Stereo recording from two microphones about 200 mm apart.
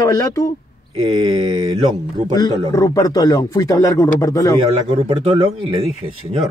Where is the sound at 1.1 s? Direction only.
25° right (ahead or behind).